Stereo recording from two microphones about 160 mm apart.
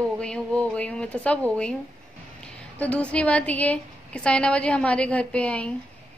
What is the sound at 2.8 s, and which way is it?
A woman's voice, 5° left (ahead or behind).